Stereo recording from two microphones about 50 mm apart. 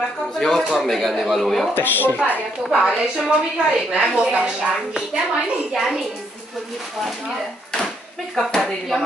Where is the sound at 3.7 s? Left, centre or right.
Centre.